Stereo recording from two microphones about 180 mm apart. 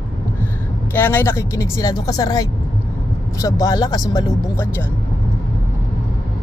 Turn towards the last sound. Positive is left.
turn(degrees=20)  # may be behind; listen again after turning